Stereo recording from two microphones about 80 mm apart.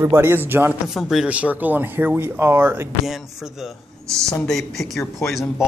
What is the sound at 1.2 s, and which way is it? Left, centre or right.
A man's voice, centre.